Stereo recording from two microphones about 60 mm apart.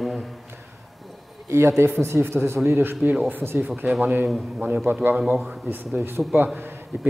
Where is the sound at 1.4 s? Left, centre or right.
Right.